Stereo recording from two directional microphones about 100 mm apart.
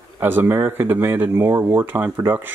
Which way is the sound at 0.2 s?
20° right (ahead or behind).